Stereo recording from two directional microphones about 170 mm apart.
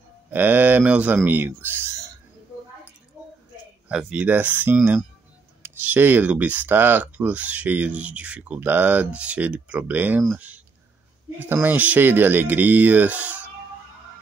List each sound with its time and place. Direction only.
0.3 s speech: 10° right (ahead or behind)
3.9 s speech: 5° right (ahead or behind)